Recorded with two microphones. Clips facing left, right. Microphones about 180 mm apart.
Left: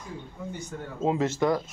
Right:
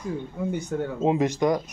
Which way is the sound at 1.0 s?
15° right (ahead or behind).